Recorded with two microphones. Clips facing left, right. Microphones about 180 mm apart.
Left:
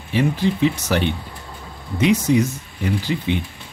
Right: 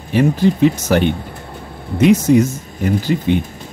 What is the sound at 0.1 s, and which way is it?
Speech, 45° right (ahead or behind).